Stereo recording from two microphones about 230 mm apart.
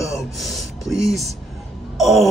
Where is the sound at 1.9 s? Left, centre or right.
Centre.